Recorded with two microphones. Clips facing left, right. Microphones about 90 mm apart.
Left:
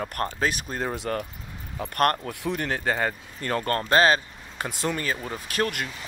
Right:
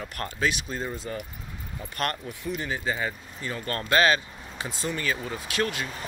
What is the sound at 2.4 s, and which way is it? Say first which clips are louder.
Speech: left 3 dB; 65° left (ahead or behind).